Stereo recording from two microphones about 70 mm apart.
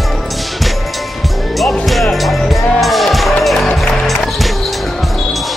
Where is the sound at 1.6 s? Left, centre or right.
Centre.